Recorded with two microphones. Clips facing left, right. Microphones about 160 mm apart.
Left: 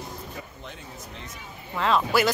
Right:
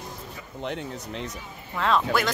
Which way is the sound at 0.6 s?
70° right (ahead or behind).